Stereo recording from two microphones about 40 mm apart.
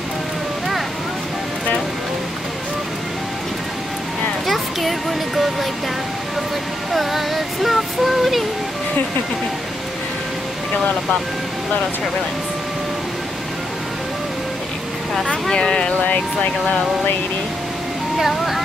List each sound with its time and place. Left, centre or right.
4.5 s music: centre
6.9 s speech: centre
15.5 s speech: left